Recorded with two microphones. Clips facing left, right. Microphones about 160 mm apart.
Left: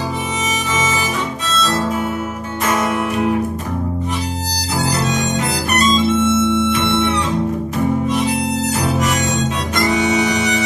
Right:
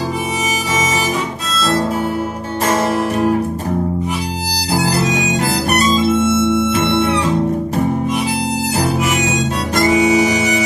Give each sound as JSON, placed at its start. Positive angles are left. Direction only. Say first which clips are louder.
{"t": 2.6, "sound": "music", "louder": "right 2 dB", "side_deg": -30}
{"t": 4.8, "sound": "music", "louder": "even", "side_deg": -35}
{"t": 5.9, "sound": "music", "louder": "even", "side_deg": -5}
{"t": 8.9, "sound": "harmonica", "louder": "right 1 dB", "side_deg": -5}